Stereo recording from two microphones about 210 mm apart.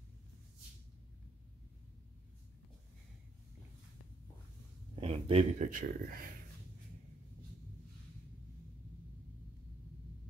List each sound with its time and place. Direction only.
5.0 s speech: 30° right (ahead or behind)